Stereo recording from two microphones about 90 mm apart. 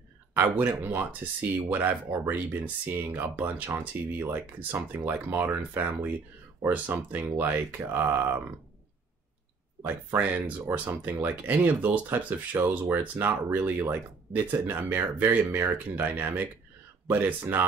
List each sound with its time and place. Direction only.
0.4 s speech: 20° right (ahead or behind)
9.8 s speech: 20° right (ahead or behind)